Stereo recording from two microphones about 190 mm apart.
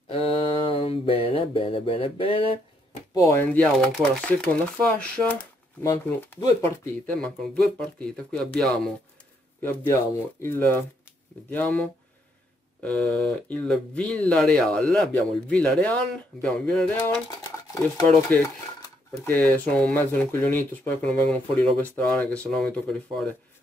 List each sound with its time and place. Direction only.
0.1 s mantra: 30° left (ahead or behind)
3.2 s speech: 15° left (ahead or behind)
17.9 s speech: 10° left (ahead or behind)
19.5 s speech: 5° left (ahead or behind)